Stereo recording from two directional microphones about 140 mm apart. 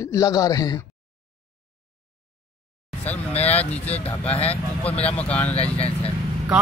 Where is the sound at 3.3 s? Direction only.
50° left (ahead or behind).